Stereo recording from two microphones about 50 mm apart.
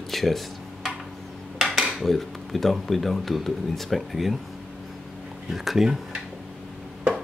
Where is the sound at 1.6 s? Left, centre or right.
Centre.